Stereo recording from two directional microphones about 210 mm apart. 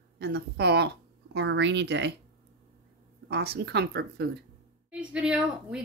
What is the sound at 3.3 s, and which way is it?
Speech, 50° right (ahead or behind).